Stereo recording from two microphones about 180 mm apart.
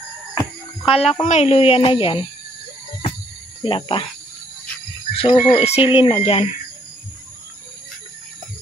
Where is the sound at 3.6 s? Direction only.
30° left (ahead or behind).